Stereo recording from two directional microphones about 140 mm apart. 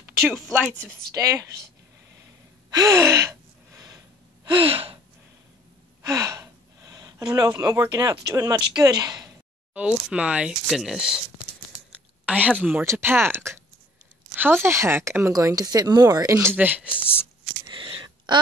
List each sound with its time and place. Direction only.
0.0 s speech: 15° right (ahead or behind)
2.7 s gasp: 20° right (ahead or behind)
4.5 s gasp: 40° right (ahead or behind)
6.0 s speech: 20° right (ahead or behind)
9.8 s speech: 10° right (ahead or behind)
12.3 s speech: 10° right (ahead or behind)
16.5 s speech: 10° right (ahead or behind)
16.9 s speech: 15° left (ahead or behind)
17.6 s a sound: 35° right (ahead or behind)